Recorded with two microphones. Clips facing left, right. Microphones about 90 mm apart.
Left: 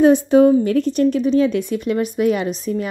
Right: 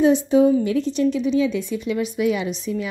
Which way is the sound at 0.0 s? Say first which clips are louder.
Left 4 dB; 55° left (ahead or behind).